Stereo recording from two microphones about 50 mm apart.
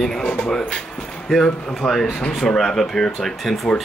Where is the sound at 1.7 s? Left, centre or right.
Centre.